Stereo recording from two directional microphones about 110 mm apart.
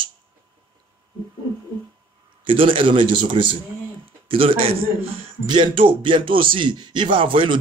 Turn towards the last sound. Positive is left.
turn(degrees=-55)  # may be behind; listen again after turning